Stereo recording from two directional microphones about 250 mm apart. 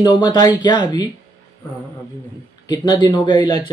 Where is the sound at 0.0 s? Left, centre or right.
Centre.